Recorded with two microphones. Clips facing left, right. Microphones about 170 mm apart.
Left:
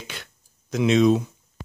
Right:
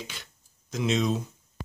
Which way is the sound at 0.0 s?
65° left (ahead or behind).